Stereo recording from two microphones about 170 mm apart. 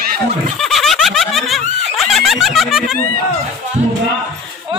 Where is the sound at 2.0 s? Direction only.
Centre (ahead or behind).